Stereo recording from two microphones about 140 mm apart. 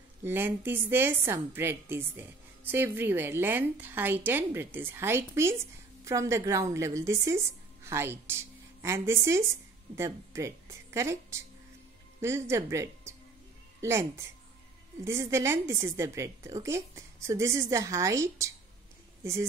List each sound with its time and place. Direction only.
0.2 s a woman's voice: 15° right (ahead or behind)